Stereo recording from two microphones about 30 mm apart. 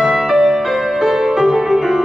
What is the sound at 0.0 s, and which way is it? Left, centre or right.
Music, right.